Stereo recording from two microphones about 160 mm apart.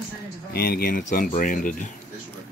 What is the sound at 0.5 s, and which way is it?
Speech, 70° left (ahead or behind).